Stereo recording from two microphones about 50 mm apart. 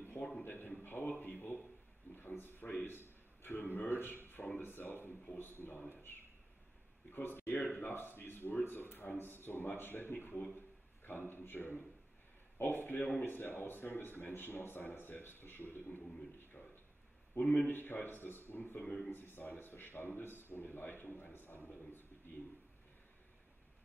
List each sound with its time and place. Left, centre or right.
0.4 s a man's voice: left
2.1 s a sound: left
2.7 s a man's voice: left
7.1 s speech: left
17.3 s a man's voice: left
17.6 s speech: left